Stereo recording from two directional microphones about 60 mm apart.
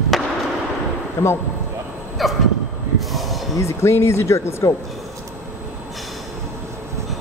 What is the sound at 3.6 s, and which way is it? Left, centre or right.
Speech, left.